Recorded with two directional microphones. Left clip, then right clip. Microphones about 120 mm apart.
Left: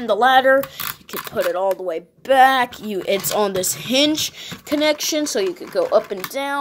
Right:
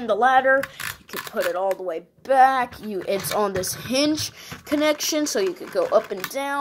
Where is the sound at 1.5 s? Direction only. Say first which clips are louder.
Left 4 dB; 35° left (ahead or behind).